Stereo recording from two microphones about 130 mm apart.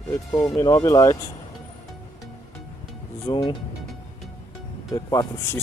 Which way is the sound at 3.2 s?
35° left (ahead or behind).